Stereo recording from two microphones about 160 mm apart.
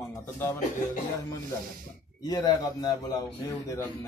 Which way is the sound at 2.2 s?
25° left (ahead or behind).